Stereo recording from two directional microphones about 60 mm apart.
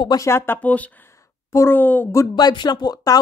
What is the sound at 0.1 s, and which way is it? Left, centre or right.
Speech, left.